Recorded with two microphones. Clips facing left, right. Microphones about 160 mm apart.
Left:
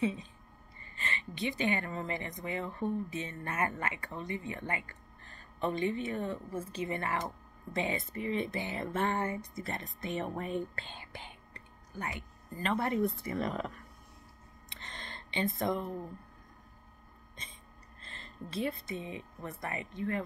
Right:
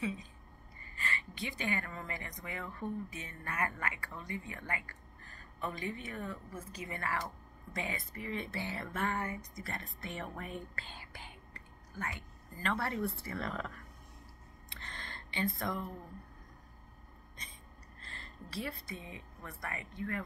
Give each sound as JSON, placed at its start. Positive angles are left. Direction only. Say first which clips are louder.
{"t": 0.0, "sound": "speech", "louder": "left 6 dB", "side_deg": 25}
{"t": 14.7, "sound": "a sound", "louder": "left 2 dB", "side_deg": 20}
{"t": 17.4, "sound": "hiccup", "louder": "left 2 dB", "side_deg": 25}
{"t": 18.0, "sound": "speech", "louder": "left 5 dB", "side_deg": 20}